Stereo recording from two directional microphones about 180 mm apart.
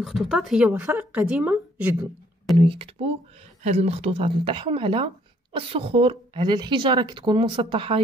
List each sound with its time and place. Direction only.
0.0 s a woman's voice: centre (ahead or behind)
2.6 s a woman's voice: 30° right (ahead or behind)